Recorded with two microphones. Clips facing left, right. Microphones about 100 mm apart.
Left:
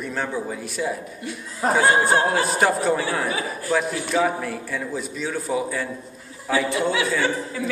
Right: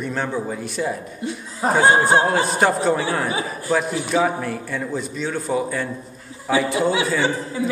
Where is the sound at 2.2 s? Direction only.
Centre (ahead or behind).